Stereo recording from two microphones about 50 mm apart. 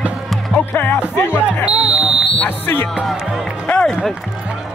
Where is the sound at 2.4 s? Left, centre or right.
Left.